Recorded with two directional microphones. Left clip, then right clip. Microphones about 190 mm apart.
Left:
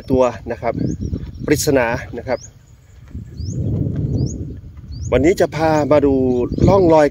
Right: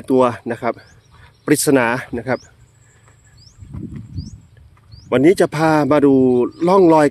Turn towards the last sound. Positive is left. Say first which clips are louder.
# even
turn(degrees=-20)  # may be behind; listen again after turning